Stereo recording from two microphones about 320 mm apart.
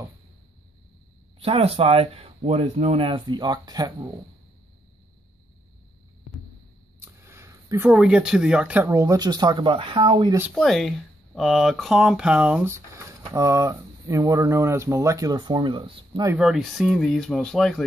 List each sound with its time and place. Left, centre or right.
1.4 s speech: centre
7.0 s speech: centre